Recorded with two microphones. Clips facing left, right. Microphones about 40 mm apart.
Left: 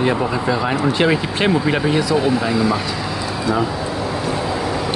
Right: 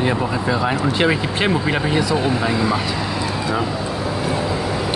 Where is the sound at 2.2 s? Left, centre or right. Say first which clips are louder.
Left 2 dB; right.